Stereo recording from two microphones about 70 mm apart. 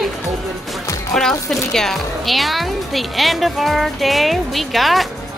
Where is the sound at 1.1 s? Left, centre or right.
Centre.